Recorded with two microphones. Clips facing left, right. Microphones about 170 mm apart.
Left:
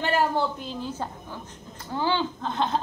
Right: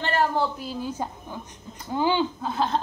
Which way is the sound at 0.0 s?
10° left (ahead or behind).